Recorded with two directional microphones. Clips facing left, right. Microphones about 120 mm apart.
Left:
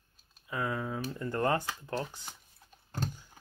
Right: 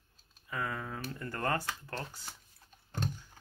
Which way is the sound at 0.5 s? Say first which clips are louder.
Left 4 dB; 10° left (ahead or behind).